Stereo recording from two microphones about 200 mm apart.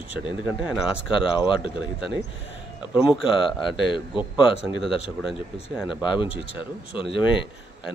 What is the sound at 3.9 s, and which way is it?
Speech, 25° left (ahead or behind).